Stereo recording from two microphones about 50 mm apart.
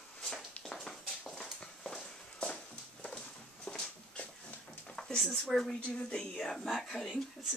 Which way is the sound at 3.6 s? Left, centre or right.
Centre.